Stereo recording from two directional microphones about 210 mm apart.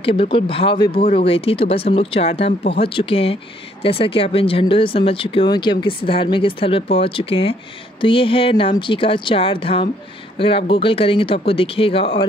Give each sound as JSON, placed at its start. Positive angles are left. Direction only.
{"t": 0.0, "sound": "speech", "side_deg": 25}